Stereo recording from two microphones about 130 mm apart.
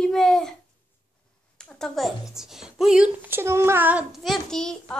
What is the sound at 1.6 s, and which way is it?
A child's voice, 5° left (ahead or behind).